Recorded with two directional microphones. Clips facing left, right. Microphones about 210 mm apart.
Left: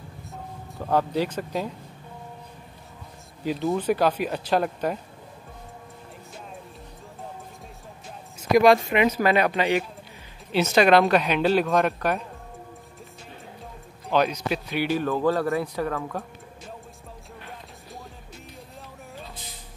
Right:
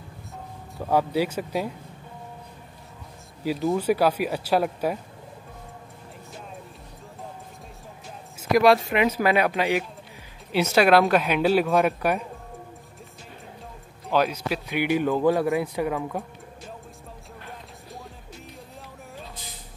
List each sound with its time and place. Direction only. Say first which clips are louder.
0.7 s speech: right 1 dB; 5° right (ahead or behind)
3.4 s speech: right 1 dB; 5° right (ahead or behind)
8.4 s speech: left 1 dB; centre (ahead or behind)
14.0 s speech: even; 5° right (ahead or behind)
14.8 s speech: right 3 dB; 15° right (ahead or behind)